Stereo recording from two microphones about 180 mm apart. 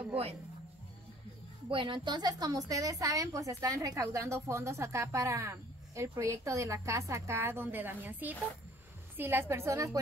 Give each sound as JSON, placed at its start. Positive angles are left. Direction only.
{"t": 1.7, "sound": "a woman's voice", "side_deg": -25}